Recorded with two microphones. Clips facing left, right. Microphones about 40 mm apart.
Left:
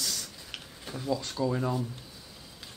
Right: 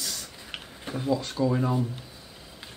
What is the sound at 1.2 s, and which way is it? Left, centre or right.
Speech, centre.